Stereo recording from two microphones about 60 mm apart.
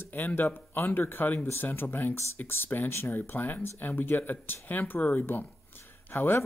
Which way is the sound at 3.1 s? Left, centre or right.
Left.